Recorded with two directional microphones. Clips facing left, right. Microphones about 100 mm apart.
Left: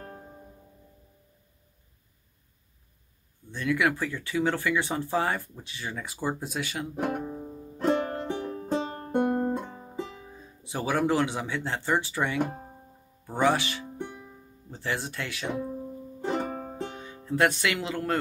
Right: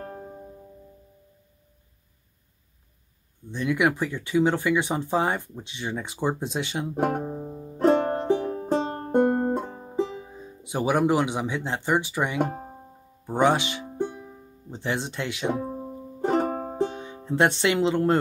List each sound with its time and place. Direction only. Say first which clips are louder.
3.5 s speech: right 3 dB; 20° right (ahead or behind)
7.0 s banjo: right 5 dB; 40° right (ahead or behind)
8.4 s music: right 4 dB; 35° right (ahead or behind)
9.8 s speech: right 9 dB; 25° right (ahead or behind)
12.4 s speech: right 5 dB; 30° right (ahead or behind)
13.3 s music: right 3 dB; 20° right (ahead or behind)
14.7 s speech: right 3 dB; 20° right (ahead or behind)
15.5 s music: right 2 dB; 35° right (ahead or behind)
16.7 s music: right 9 dB; 20° right (ahead or behind)